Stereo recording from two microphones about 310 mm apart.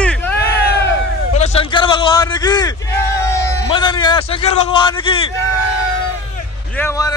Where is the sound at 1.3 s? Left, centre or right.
Centre.